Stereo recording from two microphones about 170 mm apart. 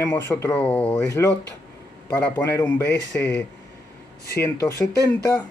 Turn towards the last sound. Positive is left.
turn(degrees=20)  # may be behind; listen again after turning